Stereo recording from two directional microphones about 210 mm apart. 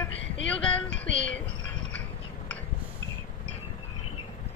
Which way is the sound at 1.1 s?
60° left (ahead or behind).